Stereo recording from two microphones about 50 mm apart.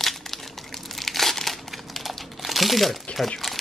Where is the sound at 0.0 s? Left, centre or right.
Centre.